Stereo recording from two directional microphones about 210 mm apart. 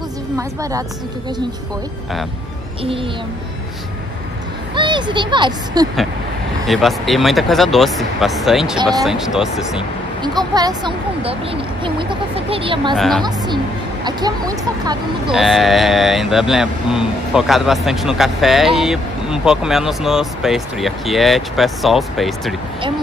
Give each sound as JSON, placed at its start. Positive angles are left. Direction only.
{"t": 0.4, "sound": "speech", "side_deg": -15}
{"t": 4.7, "sound": "speech", "side_deg": -20}
{"t": 6.7, "sound": "speech", "side_deg": 0}
{"t": 10.2, "sound": "speech", "side_deg": -20}
{"t": 12.9, "sound": "speech", "side_deg": 0}
{"t": 14.0, "sound": "speech", "side_deg": -20}
{"t": 15.3, "sound": "speech", "side_deg": 0}